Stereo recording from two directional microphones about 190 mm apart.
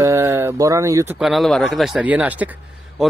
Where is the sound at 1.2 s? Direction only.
Centre (ahead or behind).